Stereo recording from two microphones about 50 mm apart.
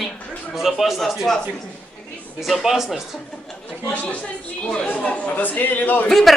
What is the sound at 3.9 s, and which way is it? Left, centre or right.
Speech, left.